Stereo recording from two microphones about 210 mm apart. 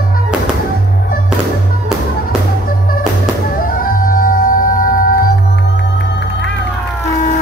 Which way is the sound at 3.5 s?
40° left (ahead or behind).